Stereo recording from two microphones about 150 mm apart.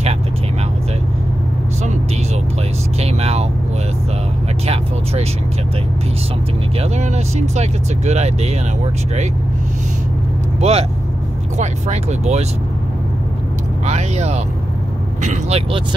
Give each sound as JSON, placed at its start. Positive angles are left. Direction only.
{"t": 3.0, "sound": "vehicle", "side_deg": -45}
{"t": 6.8, "sound": "speech", "side_deg": -50}
{"t": 10.6, "sound": "speech", "side_deg": -45}
{"t": 13.8, "sound": "speech", "side_deg": -50}